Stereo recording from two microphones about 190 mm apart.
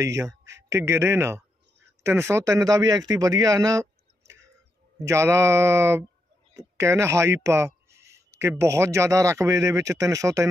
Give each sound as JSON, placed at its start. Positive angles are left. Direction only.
{"t": 0.0, "sound": "speech", "side_deg": -15}